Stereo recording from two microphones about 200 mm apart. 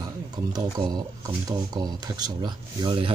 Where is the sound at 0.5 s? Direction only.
20° right (ahead or behind).